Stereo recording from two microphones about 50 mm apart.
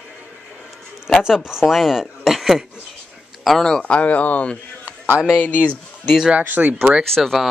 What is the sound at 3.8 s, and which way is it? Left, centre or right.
Speech, left.